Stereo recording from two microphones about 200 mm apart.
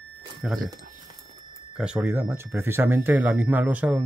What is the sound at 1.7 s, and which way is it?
Speech, 5° right (ahead or behind).